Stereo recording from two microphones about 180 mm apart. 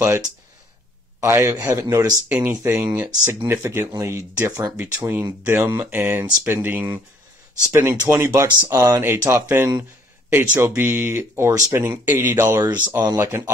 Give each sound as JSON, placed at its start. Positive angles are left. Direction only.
{"t": 0.0, "sound": "speech", "side_deg": -15}
{"t": 8.3, "sound": "speech", "side_deg": -20}